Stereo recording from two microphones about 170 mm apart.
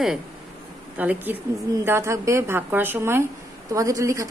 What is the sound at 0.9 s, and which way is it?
A woman's voice, 10° right (ahead or behind).